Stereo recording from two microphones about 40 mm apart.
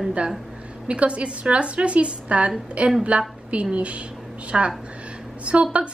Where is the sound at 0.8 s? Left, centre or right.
Right.